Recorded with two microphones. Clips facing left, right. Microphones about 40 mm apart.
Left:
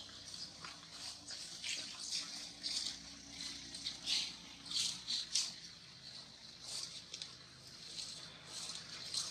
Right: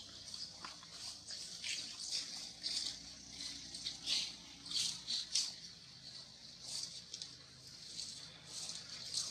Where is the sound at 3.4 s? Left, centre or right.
Left.